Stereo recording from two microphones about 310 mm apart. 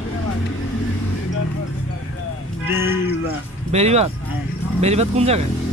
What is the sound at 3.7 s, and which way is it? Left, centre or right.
Speech, centre.